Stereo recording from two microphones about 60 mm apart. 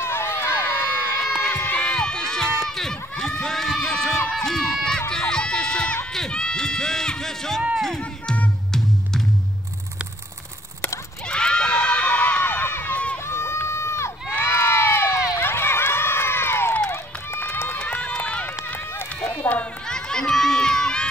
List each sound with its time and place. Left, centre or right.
0.0 s crowd: left
1.4 s crowd: left
1.8 s run: centre
5.3 s crowd: centre
6.1 s speech: centre
11.2 s a sound: centre
12.5 s run: left
13.3 s crowd: left
16.9 s run: left
17.8 s run: left
20.1 s crowd: centre